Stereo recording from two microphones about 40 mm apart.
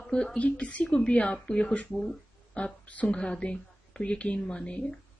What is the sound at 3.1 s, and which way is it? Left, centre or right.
A woman's voice, left.